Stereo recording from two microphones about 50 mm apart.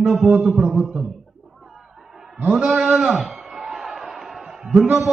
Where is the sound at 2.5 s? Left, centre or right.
Right.